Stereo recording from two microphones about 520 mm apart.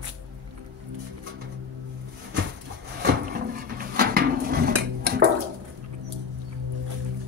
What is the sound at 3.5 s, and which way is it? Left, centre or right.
Dishes, centre.